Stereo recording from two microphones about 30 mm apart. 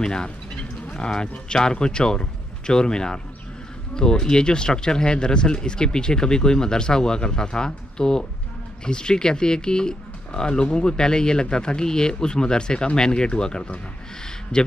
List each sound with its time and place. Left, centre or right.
0.0 s speech: left